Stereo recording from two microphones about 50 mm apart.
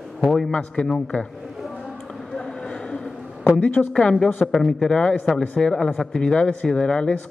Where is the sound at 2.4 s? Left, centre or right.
Centre.